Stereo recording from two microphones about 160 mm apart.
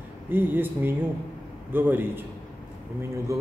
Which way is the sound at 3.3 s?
20° right (ahead or behind).